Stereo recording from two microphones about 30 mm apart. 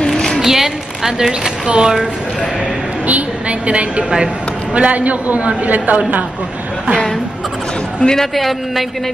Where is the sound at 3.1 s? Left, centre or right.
Right.